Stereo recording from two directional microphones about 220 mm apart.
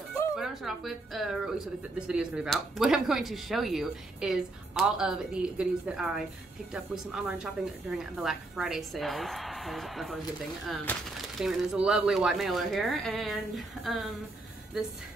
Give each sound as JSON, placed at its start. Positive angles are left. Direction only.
{"t": 0.4, "sound": "speech", "side_deg": 0}